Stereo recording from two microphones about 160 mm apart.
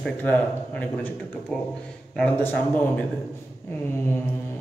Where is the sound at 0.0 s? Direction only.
10° left (ahead or behind).